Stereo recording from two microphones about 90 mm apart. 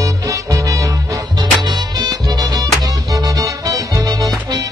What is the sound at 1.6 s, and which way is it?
Music, 50° right (ahead or behind).